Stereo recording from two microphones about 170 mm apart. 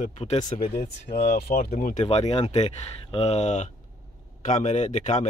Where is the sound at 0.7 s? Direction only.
65° left (ahead or behind).